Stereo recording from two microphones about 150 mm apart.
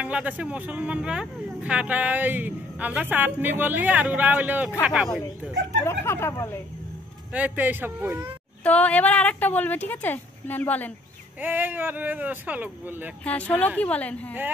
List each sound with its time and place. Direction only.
0.0 s speech: 10° right (ahead or behind)
5.9 s speech: 15° left (ahead or behind)
7.3 s speech: 10° right (ahead or behind)
8.6 s speech: 10° left (ahead or behind)
11.4 s speech: 10° right (ahead or behind)
13.2 s speech: 10° left (ahead or behind)